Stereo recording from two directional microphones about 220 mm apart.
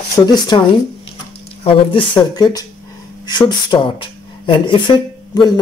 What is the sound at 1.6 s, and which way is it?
Speech, 20° left (ahead or behind).